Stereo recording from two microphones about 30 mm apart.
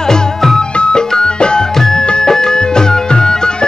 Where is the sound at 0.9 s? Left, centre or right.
Left.